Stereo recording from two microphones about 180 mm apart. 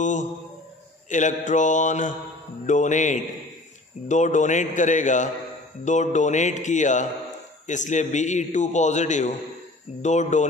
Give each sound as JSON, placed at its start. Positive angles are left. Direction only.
{"t": 0.0, "sound": "a man's voice", "side_deg": 45}